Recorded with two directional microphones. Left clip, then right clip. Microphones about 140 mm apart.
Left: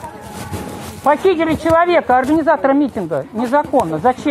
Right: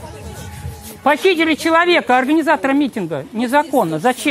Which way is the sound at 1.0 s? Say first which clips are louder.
Even; 70° right (ahead or behind).